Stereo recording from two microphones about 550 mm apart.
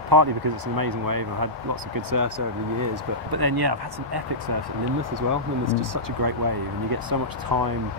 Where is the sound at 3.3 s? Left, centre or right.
Right.